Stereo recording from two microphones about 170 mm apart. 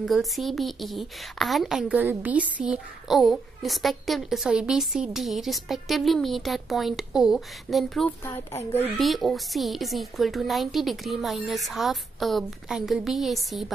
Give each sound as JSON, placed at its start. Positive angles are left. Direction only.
{"t": 0.0, "sound": "a woman's voice", "side_deg": 0}
{"t": 8.3, "sound": "a woman's voice", "side_deg": 15}
{"t": 8.9, "sound": "a woman's voice", "side_deg": 0}